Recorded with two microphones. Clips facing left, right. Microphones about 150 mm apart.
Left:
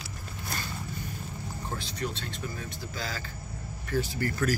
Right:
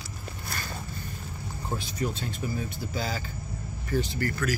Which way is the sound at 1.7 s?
10° right (ahead or behind).